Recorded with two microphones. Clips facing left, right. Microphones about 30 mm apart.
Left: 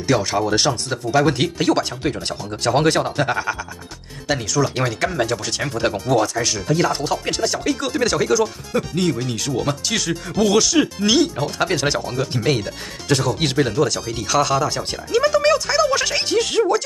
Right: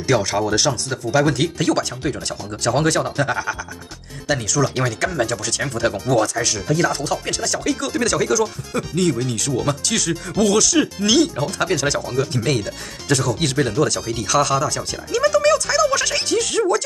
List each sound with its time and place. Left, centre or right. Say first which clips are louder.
0.0 s speech: even; centre
4.3 s speech: even; centre
9.3 s speech: right 1 dB; centre
11.5 s speech: even; centre
12.0 s speech: right 1 dB; centre
13.1 s speech: left 1 dB; left
13.6 s speech: even; centre
15.1 s music: even; left